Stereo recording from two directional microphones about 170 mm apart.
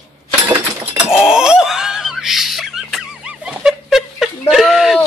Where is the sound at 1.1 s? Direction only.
5° right (ahead or behind).